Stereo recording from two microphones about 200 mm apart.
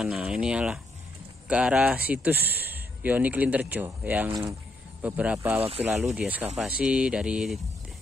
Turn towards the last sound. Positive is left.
turn(degrees=-5)  # may be behind; listen again after turning